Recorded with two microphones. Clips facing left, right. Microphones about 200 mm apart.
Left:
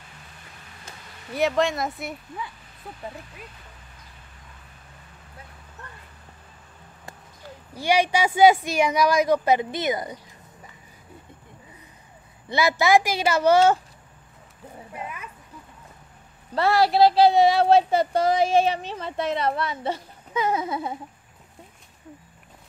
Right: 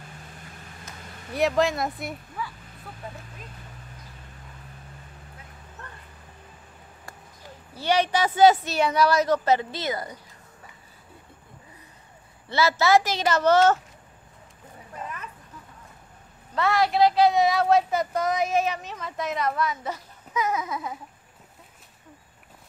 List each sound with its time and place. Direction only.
1.3 s speech: centre (ahead or behind)
7.7 s speech: 10° left (ahead or behind)
12.4 s speech: 15° left (ahead or behind)
15.0 s a sound: 10° left (ahead or behind)
16.5 s speech: 35° left (ahead or behind)